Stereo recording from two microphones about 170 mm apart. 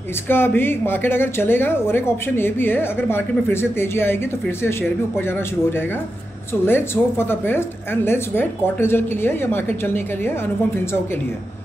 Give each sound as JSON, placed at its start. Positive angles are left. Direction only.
{"t": 0.3, "sound": "speech", "side_deg": 10}